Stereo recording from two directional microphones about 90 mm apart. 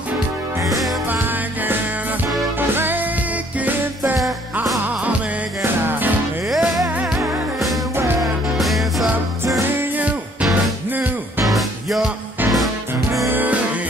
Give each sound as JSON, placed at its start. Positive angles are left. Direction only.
{"t": 2.7, "sound": "music", "side_deg": -20}
{"t": 5.6, "sound": "music", "side_deg": -25}
{"t": 6.5, "sound": "music", "side_deg": 0}
{"t": 8.2, "sound": "music", "side_deg": 0}
{"t": 9.8, "sound": "music", "side_deg": -15}
{"t": 11.4, "sound": "music", "side_deg": 0}
{"t": 13.3, "sound": "music", "side_deg": -20}